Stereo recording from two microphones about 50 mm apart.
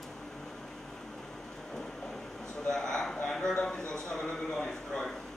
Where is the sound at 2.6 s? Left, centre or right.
Centre.